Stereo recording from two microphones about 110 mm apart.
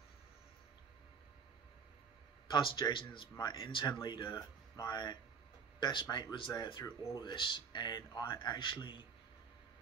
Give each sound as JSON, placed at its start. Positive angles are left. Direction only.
{"t": 2.5, "sound": "speech", "side_deg": 45}
{"t": 6.0, "sound": "speech", "side_deg": 30}
{"t": 6.3, "sound": "speech", "side_deg": 45}